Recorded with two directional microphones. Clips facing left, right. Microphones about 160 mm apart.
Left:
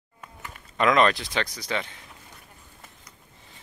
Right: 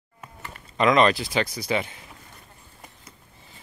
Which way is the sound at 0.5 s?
Centre (ahead or behind).